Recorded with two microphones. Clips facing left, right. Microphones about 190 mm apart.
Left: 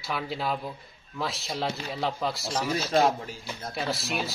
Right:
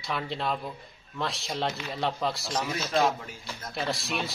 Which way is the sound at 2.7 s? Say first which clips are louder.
Left 3 dB; 30° left (ahead or behind).